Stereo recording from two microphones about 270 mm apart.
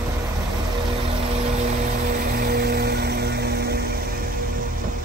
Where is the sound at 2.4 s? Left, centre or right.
Right.